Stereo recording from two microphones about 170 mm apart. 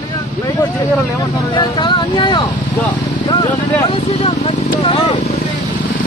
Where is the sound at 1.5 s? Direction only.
25° left (ahead or behind).